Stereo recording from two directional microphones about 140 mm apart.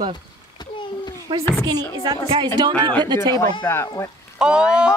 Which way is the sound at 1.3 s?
40° right (ahead or behind).